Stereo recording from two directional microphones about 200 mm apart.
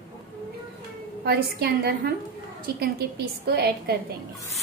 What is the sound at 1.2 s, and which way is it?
A woman's voice, 50° right (ahead or behind).